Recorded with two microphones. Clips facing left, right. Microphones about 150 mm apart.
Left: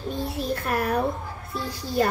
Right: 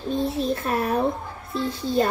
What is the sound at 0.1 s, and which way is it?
Speech, 25° right (ahead or behind).